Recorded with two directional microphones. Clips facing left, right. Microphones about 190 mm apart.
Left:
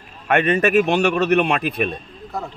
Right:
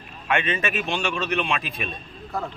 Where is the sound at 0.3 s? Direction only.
60° left (ahead or behind).